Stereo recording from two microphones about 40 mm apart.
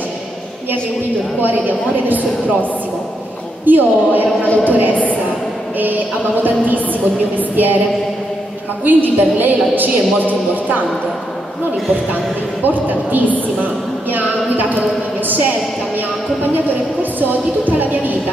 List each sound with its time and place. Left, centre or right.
1.4 s a woman's voice: right
4.9 s a sound: left
6.4 s a woman's voice: right
8.8 s a woman's voice: right
12.6 s a woman's voice: right
17.0 s a woman's voice: right